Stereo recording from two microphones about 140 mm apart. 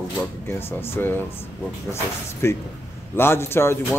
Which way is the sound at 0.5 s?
15° left (ahead or behind).